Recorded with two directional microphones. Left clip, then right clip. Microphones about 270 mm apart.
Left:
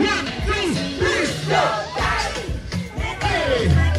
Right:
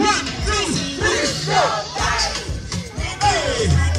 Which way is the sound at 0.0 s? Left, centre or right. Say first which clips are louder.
Right 2 dB; centre.